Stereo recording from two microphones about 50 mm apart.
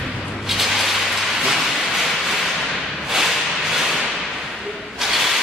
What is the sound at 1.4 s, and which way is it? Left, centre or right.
Train, centre.